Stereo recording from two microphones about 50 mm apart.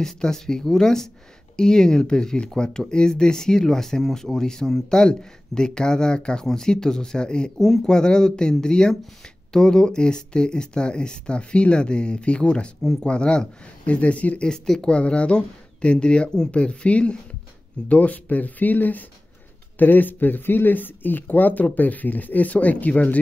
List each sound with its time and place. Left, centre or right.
0.0 s speech: centre
7.5 s speech: centre; by 23.1 s left